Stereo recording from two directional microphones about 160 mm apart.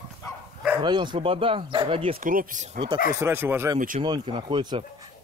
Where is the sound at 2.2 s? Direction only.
60° right (ahead or behind).